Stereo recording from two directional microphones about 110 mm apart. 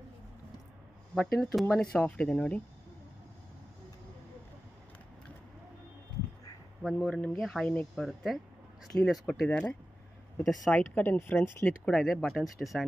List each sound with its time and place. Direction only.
1.1 s speech: 5° left (ahead or behind)
6.8 s speech: 5° left (ahead or behind)
9.5 s speech: 10° left (ahead or behind)
10.8 s speech: 20° left (ahead or behind)
11.8 s speech: 5° left (ahead or behind)